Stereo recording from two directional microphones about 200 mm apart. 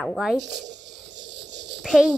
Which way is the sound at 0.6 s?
60° right (ahead or behind).